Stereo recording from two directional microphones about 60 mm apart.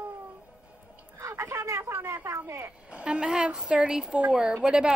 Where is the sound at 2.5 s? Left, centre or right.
Right.